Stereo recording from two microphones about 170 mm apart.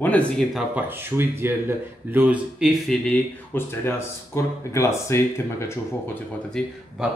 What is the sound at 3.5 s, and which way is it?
Speech, 10° left (ahead or behind).